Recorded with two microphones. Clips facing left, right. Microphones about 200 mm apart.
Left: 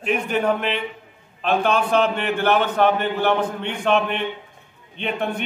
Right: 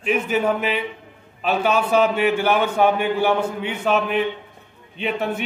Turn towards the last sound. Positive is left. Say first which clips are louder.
# right 1 dB
turn(degrees=-5)  # may be behind; listen again after turning